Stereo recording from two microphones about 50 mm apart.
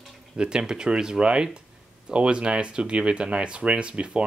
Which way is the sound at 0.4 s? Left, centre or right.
Centre.